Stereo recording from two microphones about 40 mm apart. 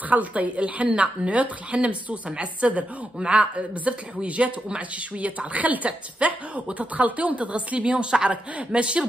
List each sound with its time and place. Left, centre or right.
0.1 s speech: right